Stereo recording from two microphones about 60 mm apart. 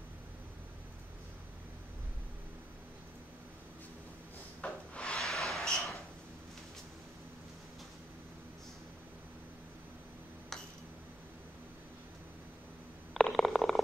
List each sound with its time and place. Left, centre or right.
4.6 s wood: centre
5.2 s a sound: centre
13.1 s stomach rumble: centre